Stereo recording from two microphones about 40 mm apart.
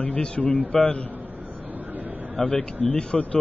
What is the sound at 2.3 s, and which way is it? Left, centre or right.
Speech, left.